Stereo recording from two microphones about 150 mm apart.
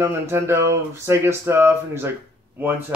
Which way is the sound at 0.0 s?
15° right (ahead or behind).